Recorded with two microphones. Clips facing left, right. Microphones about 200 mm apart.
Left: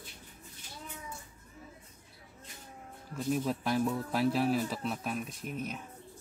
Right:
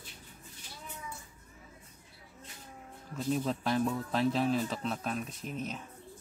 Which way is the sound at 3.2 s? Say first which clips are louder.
Even; 10° left (ahead or behind).